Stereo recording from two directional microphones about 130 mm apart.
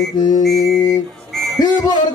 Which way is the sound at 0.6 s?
25° left (ahead or behind).